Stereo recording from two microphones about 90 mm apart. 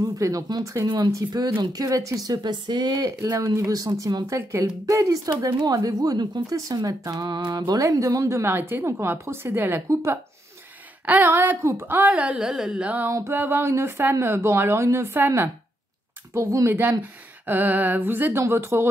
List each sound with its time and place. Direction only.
0.0 s a woman's voice: 40° right (ahead or behind); by 9.8 s 25° right (ahead or behind)
11.1 s a woman's voice: 20° right (ahead or behind)
12.0 s a woman's voice: 15° right (ahead or behind)
13.3 s a woman's voice: 25° right (ahead or behind)
17.0 s speech: 20° right (ahead or behind)